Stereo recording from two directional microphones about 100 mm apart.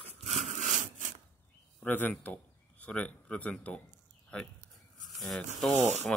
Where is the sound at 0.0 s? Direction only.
90° right.